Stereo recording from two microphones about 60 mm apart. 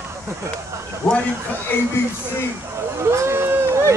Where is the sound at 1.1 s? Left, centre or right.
Centre.